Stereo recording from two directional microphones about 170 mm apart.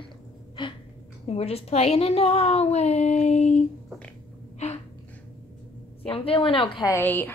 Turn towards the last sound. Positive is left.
turn(degrees=10)  # may be behind; listen again after turning